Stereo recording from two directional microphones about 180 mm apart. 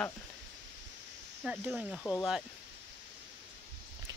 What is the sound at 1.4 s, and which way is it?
Speech, 5° right (ahead or behind).